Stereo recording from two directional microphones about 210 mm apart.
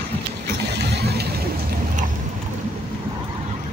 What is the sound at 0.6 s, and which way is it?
Vehicle, 50° right (ahead or behind).